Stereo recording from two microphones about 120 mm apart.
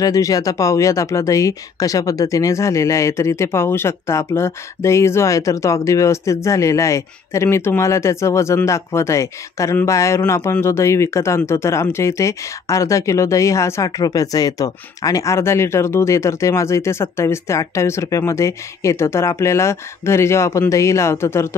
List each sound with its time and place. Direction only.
0.0 s speech: 30° left (ahead or behind)